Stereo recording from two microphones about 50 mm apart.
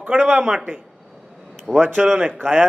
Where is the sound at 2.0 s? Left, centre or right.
Centre.